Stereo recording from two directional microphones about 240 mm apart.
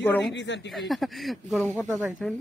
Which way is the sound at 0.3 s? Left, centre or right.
Left.